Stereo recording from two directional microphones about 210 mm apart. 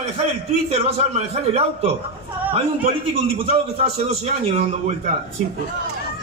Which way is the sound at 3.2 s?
30° right (ahead or behind).